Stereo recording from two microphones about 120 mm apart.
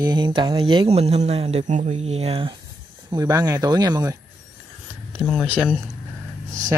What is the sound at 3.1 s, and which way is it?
Speech, 30° right (ahead or behind).